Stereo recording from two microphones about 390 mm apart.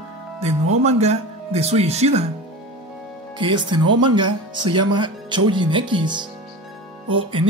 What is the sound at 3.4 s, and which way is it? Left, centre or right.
Speech, centre.